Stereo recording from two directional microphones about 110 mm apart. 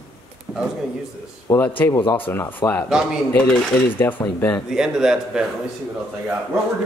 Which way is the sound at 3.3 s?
10° left (ahead or behind).